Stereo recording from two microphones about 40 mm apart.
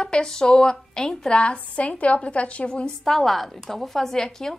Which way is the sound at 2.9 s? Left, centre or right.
Centre.